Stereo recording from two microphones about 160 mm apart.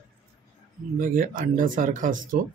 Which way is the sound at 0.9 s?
60° right (ahead or behind).